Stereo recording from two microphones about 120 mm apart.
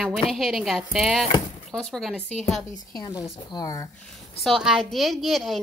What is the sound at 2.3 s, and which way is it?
Speech, 70° left (ahead or behind).